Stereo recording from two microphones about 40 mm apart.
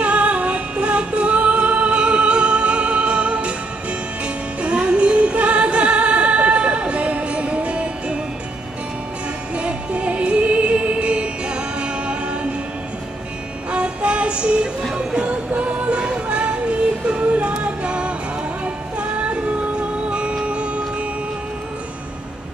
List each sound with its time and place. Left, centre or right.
0.0 s music: right
4.6 s music: right
9.6 s music: right
13.7 s music: right
20.1 s music: right